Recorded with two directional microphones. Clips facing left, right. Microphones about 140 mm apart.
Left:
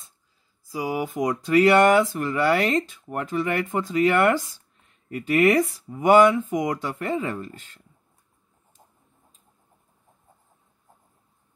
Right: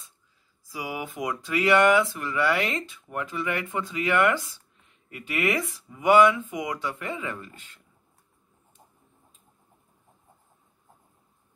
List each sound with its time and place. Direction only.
0.7 s speech: 35° left (ahead or behind)